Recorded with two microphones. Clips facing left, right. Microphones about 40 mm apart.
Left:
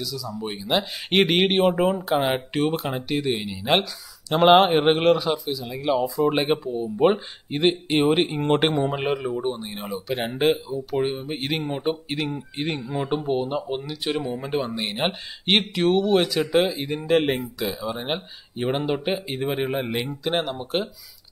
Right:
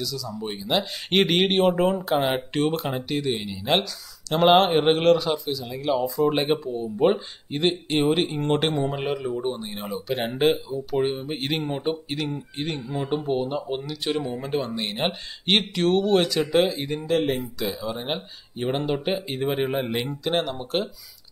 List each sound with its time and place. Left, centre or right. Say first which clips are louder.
0.0 s speech: even; centre
9.4 s speech: left 1 dB; centre